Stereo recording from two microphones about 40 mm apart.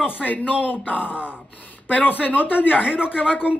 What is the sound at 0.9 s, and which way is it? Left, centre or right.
Speech, right.